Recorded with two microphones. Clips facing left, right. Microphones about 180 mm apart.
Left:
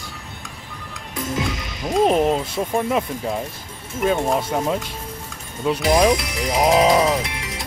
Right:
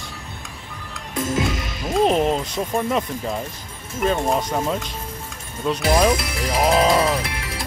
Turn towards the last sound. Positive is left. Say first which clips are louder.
# left 1 dB
turn(degrees=20)  # may be behind; listen again after turning